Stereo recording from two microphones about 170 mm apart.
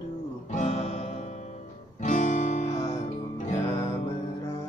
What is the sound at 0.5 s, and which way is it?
Music, 40° left (ahead or behind).